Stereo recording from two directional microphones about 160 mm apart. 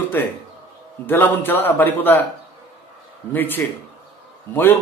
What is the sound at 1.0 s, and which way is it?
A man's voice, 10° left (ahead or behind).